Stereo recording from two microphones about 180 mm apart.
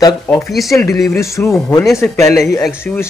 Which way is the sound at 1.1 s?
15° left (ahead or behind).